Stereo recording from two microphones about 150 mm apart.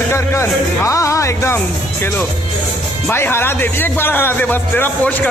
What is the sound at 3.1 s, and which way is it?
Speech, 15° left (ahead or behind).